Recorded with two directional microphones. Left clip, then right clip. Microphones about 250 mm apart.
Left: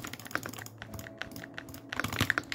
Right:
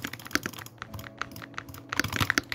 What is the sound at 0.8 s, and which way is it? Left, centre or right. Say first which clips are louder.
Computer keyboard: right 6 dB; centre.